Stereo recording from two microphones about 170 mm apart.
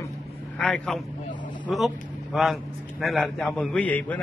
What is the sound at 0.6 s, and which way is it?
Speech, 5° left (ahead or behind).